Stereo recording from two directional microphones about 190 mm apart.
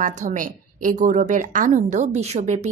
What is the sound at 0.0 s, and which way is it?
A woman's voice, 40° right (ahead or behind).